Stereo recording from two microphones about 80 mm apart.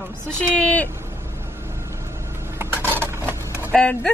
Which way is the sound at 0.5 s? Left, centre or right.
Centre.